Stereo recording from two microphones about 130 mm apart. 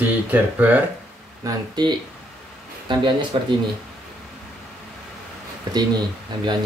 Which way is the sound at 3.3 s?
40° right (ahead or behind).